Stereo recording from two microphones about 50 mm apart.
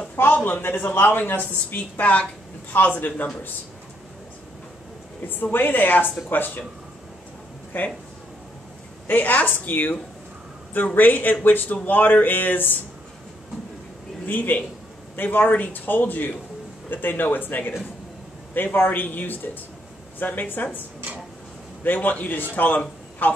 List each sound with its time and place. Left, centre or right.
0.5 s speech: left
5.3 s speech: left
7.7 s speech: left
9.0 s speech: left
11.0 s speech: left
14.2 s speech: left
21.8 s speech: left